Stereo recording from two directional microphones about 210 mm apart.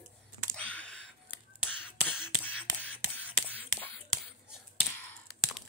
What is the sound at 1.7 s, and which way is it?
Beatboxing, 10° left (ahead or behind).